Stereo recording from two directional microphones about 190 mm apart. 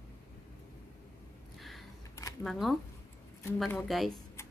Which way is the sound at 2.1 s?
15° left (ahead or behind).